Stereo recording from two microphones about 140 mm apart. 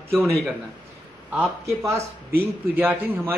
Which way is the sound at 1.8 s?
20° right (ahead or behind).